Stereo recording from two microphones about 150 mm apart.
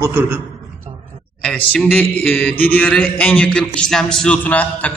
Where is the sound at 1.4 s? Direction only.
5° left (ahead or behind).